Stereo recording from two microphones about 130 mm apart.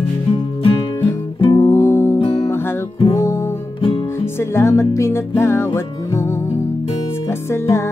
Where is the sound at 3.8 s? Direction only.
45° left (ahead or behind).